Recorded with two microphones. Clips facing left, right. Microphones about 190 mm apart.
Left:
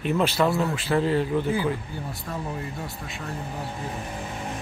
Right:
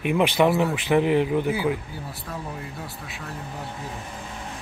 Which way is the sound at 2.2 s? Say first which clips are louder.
Left 3 dB; centre (ahead or behind).